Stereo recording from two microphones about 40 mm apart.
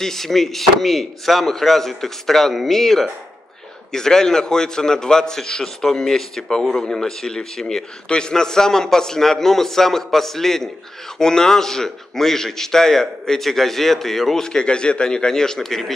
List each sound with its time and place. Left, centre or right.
0.0 s a man's voice: centre